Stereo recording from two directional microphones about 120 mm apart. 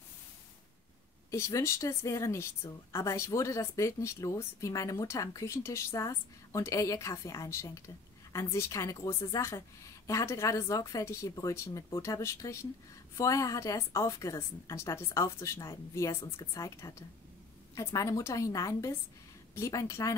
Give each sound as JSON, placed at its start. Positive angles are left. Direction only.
{"t": 1.3, "sound": "a woman's voice", "side_deg": 25}